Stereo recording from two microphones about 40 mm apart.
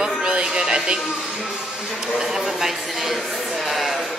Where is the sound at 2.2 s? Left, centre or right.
Centre.